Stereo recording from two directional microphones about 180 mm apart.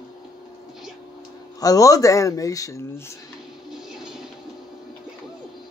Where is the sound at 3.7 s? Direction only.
Centre (ahead or behind).